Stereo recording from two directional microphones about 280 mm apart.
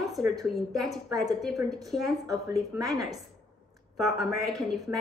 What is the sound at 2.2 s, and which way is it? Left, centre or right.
Speech, centre.